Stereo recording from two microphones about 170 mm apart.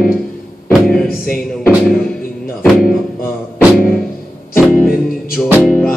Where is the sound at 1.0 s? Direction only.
60° left (ahead or behind).